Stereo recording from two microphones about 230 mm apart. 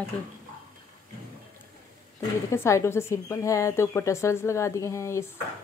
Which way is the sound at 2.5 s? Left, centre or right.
Centre.